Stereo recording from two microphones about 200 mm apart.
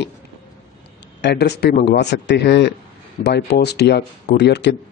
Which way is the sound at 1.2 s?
55° left (ahead or behind).